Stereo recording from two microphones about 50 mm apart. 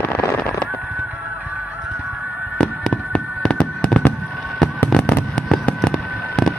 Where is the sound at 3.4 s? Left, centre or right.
Centre.